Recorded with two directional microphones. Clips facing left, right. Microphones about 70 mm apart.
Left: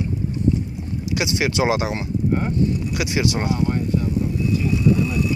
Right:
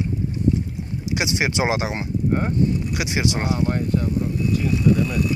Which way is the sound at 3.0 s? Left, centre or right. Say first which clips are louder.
Left 3 dB; centre.